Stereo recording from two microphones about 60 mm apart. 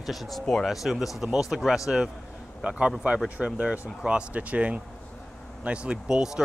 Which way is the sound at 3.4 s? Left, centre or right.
Centre.